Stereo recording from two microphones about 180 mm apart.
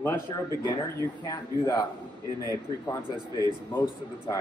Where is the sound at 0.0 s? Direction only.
15° left (ahead or behind).